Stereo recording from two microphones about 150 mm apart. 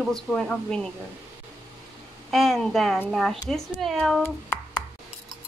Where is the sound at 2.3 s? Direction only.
Centre (ahead or behind).